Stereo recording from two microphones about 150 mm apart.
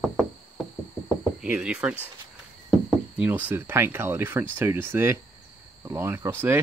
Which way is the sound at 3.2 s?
10° right (ahead or behind).